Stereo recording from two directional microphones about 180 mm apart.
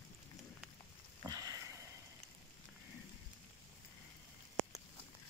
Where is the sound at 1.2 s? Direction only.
20° right (ahead or behind).